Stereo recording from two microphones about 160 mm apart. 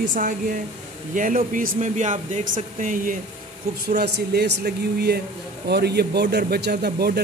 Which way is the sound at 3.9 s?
85° right.